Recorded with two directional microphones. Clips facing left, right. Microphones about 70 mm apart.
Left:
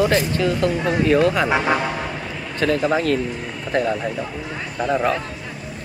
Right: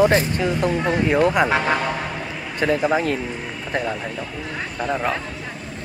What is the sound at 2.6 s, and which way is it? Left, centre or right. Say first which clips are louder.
Speech: even; centre.